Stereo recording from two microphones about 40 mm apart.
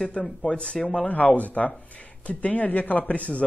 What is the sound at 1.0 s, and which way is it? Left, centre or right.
Speech, left.